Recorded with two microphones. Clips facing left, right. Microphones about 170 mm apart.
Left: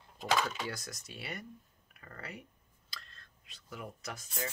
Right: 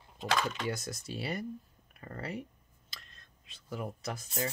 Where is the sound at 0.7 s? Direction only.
25° right (ahead or behind).